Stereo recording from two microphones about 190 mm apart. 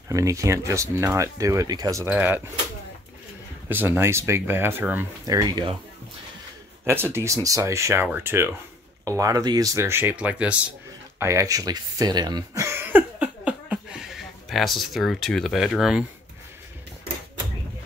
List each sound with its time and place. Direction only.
0.1 s speech: 15° right (ahead or behind)
3.6 s speech: 10° right (ahead or behind)
6.8 s speech: 10° right (ahead or behind)
11.1 s throat clearing: 15° right (ahead or behind)